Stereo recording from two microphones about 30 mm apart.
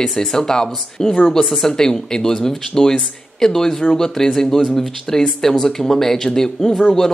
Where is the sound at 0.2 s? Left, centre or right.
Centre.